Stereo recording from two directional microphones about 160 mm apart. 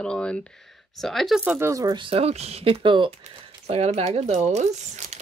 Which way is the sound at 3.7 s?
40° right (ahead or behind).